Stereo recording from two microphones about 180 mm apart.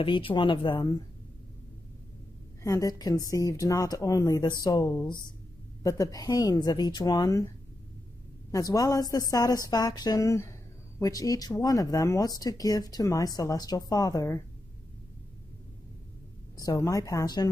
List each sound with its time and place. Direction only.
0.0 s speech: 30° left (ahead or behind)
2.6 s speech: 20° left (ahead or behind)
8.5 s speech: 20° left (ahead or behind)
16.5 s speech: 20° left (ahead or behind)